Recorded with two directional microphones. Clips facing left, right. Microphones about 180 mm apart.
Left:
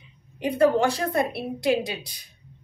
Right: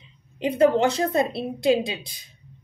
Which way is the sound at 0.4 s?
20° right (ahead or behind).